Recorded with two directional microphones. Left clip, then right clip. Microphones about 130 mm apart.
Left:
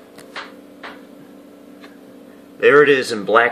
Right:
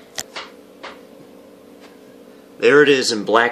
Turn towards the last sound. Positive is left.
turn(degrees=-25)  # may be behind; listen again after turning